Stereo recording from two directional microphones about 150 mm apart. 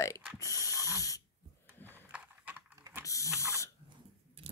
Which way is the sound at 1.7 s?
15° left (ahead or behind).